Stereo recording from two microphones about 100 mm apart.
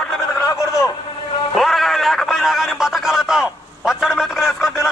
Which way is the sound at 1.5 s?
Centre (ahead or behind).